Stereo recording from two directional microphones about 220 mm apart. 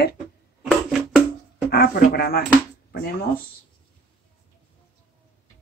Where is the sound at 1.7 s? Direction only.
45° left (ahead or behind).